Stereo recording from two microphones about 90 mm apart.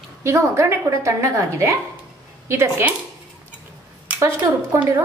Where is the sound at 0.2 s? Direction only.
30° right (ahead or behind).